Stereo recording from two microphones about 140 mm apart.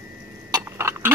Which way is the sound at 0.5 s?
20° right (ahead or behind).